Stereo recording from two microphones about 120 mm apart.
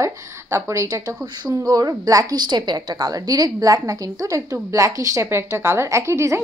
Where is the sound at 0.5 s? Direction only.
25° right (ahead or behind).